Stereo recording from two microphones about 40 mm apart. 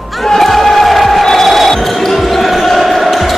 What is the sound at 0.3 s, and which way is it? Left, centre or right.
Basketball bounce, centre.